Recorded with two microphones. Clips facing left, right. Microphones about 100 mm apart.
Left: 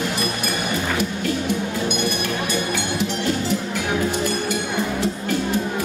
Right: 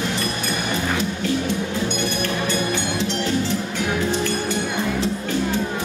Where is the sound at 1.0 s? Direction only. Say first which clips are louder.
Even; 15° left (ahead or behind).